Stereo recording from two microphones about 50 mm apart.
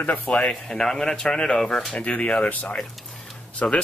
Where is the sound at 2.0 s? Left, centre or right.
Left.